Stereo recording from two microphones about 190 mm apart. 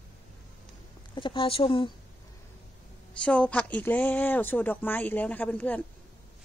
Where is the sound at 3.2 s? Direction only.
5° left (ahead or behind).